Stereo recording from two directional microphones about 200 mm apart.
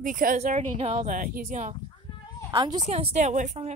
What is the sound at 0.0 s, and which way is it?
Speech, 40° right (ahead or behind).